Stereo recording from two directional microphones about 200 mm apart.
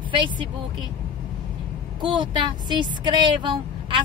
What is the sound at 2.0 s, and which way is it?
Speech, 25° right (ahead or behind).